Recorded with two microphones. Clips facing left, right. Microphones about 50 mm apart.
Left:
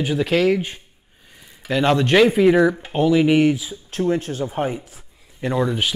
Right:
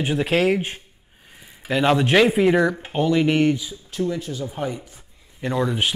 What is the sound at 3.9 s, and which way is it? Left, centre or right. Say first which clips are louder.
Speech: left 4 dB; left.